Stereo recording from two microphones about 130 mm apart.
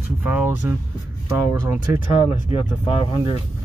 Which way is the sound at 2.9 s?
40° left (ahead or behind).